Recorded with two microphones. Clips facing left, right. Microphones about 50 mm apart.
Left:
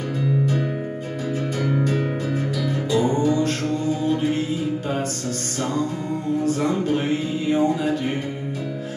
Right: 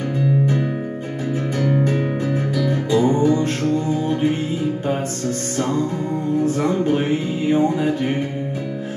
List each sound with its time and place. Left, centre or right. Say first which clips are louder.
1.6 s music: right 3 dB; centre; by 4.4 s right
6.4 s music: right 3 dB; centre